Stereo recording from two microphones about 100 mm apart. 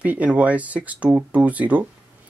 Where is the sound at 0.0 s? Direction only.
15° right (ahead or behind).